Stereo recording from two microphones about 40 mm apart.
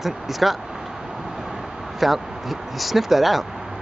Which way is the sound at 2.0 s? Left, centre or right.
Centre.